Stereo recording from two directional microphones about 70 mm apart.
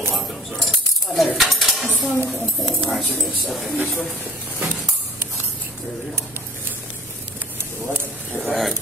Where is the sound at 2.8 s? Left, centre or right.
Centre.